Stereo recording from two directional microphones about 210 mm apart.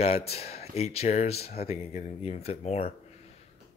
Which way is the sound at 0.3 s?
30° left (ahead or behind).